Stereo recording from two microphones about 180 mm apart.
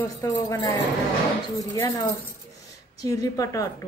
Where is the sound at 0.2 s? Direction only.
15° left (ahead or behind).